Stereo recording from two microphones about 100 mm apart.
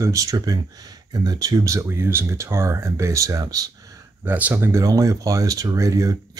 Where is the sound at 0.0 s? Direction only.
35° right (ahead or behind).